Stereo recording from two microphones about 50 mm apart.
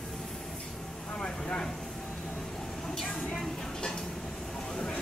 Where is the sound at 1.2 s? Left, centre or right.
Centre.